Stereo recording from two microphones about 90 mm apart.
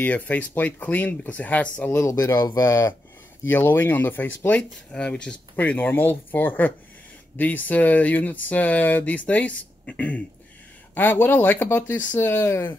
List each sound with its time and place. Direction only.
0.0 s speech: 15° left (ahead or behind)
1.9 s speech: 25° left (ahead or behind)
2.1 s speech: 40° left (ahead or behind)
3.4 s speech: 25° left (ahead or behind)